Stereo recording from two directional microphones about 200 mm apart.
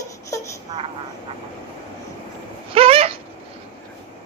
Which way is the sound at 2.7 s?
30° right (ahead or behind).